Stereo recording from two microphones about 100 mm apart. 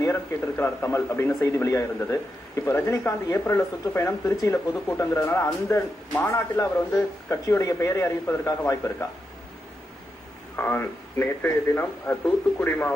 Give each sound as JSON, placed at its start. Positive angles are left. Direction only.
{"t": 0.0, "sound": "a man's voice", "side_deg": 25}
{"t": 10.5, "sound": "a man's voice", "side_deg": 20}